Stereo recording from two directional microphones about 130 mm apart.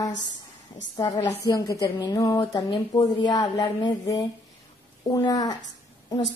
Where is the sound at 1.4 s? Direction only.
25° left (ahead or behind).